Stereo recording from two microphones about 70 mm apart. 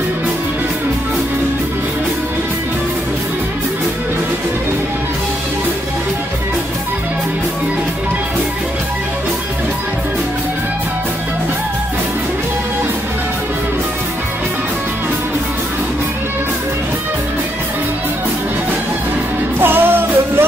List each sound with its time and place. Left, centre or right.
19.6 s music: right